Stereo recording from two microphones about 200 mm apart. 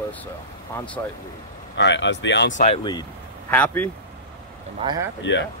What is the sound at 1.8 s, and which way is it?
Speech, 65° left (ahead or behind).